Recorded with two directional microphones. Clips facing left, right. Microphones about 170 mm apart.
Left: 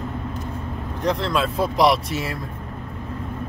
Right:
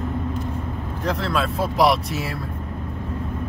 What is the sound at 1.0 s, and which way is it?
Speech, centre (ahead or behind).